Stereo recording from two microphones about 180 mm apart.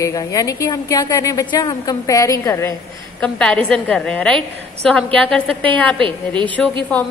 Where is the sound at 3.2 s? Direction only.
5° left (ahead or behind).